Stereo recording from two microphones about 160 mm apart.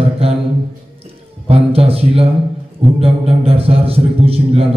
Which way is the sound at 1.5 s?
40° right (ahead or behind).